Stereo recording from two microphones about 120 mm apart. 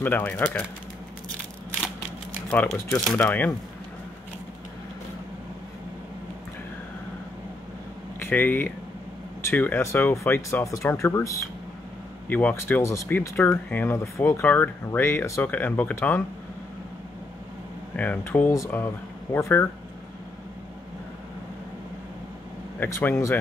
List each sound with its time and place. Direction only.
0.0 s speech: 15° left (ahead or behind)
2.5 s speech: 10° left (ahead or behind)
8.2 s speech: 15° left (ahead or behind)
17.9 s speech: 15° left (ahead or behind)
22.8 s speech: 20° left (ahead or behind)